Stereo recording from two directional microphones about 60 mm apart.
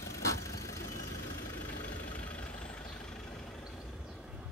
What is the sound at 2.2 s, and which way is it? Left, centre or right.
Vehicle, left.